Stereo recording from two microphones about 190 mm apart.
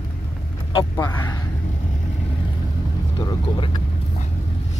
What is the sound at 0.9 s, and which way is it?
Speech, 15° left (ahead or behind).